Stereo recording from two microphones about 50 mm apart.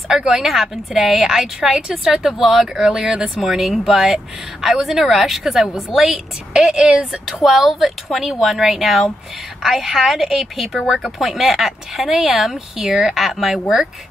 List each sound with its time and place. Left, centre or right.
0.2 s a woman's voice: centre
7.2 s a woman's voice: centre